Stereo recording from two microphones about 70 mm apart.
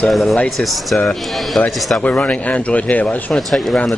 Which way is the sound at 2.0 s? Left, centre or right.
Centre.